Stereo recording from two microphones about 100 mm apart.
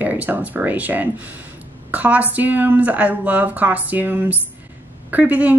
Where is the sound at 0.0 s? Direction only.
15° right (ahead or behind).